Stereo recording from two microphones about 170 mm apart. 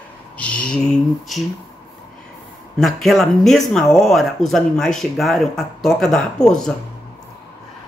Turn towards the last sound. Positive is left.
turn(degrees=5)  # may be behind; listen again after turning